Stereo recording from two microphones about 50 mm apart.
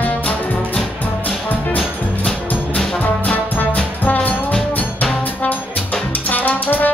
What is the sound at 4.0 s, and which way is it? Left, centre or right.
Music, left.